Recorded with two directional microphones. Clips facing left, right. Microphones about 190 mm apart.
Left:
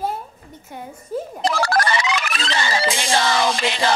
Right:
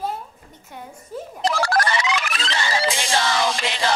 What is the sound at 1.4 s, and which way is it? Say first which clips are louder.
Music: left 1 dB; 55° left (ahead or behind).